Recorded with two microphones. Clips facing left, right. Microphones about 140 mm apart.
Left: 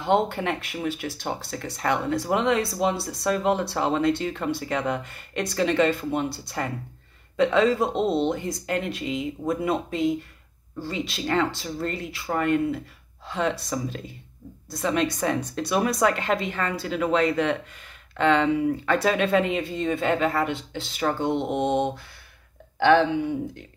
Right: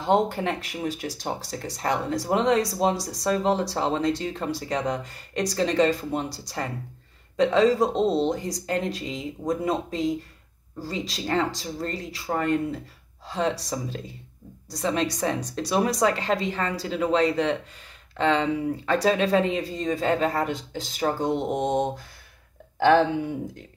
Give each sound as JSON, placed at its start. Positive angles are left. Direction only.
{"t": 0.0, "sound": "speech", "side_deg": -35}